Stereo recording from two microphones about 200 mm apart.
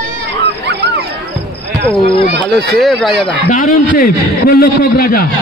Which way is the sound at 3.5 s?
45° left (ahead or behind).